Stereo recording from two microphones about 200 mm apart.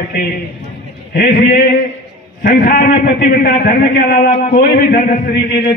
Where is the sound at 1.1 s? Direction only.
45° left (ahead or behind).